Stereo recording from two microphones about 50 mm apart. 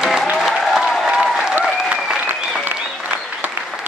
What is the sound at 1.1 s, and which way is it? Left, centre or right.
Applause, centre.